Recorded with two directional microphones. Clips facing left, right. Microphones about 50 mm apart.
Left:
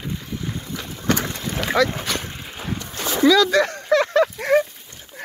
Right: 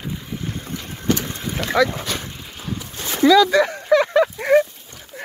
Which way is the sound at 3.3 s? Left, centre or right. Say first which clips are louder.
Right 2 dB; centre.